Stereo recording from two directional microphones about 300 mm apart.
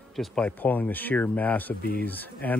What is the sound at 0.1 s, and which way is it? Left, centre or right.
Speech, centre.